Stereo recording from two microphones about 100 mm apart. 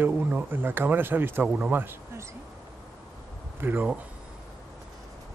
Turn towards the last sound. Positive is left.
turn(degrees=-20)  # may be behind; listen again after turning